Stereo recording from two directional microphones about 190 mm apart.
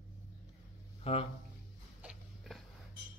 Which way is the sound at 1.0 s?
30° left (ahead or behind).